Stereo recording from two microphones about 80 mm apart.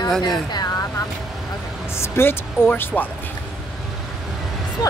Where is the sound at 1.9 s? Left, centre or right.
Left.